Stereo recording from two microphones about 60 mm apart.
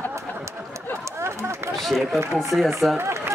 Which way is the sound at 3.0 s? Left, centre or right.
Right.